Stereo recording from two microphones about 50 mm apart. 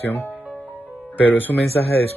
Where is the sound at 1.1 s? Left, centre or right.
Left.